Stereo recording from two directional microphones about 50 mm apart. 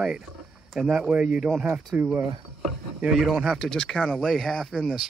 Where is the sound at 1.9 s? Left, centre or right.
Right.